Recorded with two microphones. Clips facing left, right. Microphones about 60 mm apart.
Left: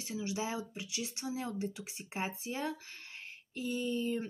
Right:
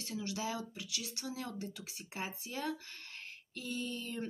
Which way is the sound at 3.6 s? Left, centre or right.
Centre.